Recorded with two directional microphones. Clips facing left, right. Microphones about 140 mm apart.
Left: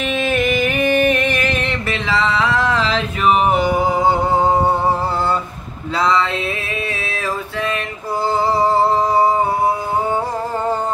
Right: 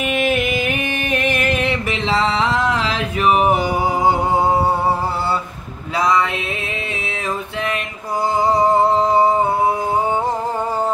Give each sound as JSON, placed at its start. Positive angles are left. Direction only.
{"t": 0.0, "sound": "music", "side_deg": -10}
{"t": 2.0, "sound": "a sound", "side_deg": -25}
{"t": 5.9, "sound": "male singing", "side_deg": -15}
{"t": 8.4, "sound": "music", "side_deg": -15}